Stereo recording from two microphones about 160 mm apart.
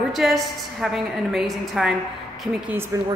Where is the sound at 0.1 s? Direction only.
Centre (ahead or behind).